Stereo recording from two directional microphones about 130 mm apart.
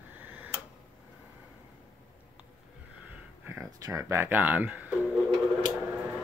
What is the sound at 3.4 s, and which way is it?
Speech, 20° right (ahead or behind).